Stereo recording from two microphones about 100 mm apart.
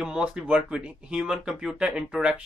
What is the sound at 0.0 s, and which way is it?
Speech, 10° right (ahead or behind).